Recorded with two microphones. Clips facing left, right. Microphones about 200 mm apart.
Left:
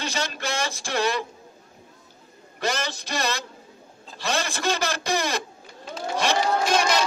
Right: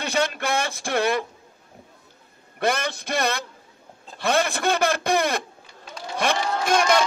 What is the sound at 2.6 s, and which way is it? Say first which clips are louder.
A man's voice: right 4 dB; 55° right (ahead or behind).